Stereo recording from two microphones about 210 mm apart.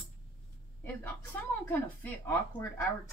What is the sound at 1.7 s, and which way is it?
A woman's voice, 10° left (ahead or behind).